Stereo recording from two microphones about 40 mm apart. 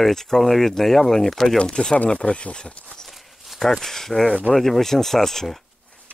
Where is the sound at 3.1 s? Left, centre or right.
Centre.